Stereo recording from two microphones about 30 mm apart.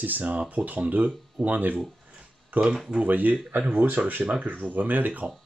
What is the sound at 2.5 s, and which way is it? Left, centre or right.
Speech, right.